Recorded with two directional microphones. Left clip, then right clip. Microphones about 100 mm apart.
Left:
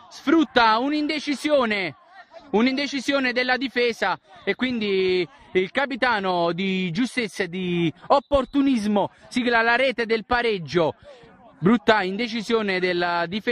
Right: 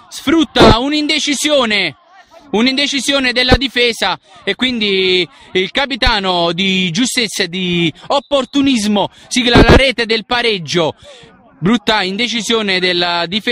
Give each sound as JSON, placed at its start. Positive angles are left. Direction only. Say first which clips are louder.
{"t": 0.1, "sound": "a man's voice", "louder": "right 6 dB", "side_deg": -20}